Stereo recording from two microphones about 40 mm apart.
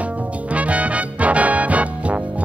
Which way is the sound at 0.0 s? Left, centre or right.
Right.